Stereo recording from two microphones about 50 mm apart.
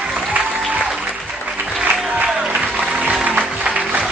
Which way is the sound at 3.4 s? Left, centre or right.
Centre.